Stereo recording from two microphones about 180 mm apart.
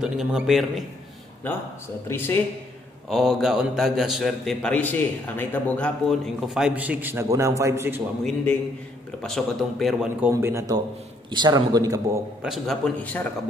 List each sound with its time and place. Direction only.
0.0 s a man's voice: centre (ahead or behind)
2.0 s speech: 15° left (ahead or behind)
3.1 s a man's voice: centre (ahead or behind)
8.2 s a man's voice: 5° left (ahead or behind)
10.3 s a man's voice: 15° right (ahead or behind)
12.4 s a man's voice: centre (ahead or behind)